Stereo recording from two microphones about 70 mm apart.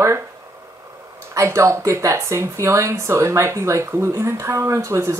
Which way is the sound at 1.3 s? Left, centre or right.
Right.